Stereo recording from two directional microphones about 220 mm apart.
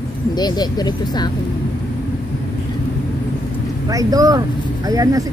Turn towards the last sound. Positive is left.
turn(degrees=-15)  # may be behind; listen again after turning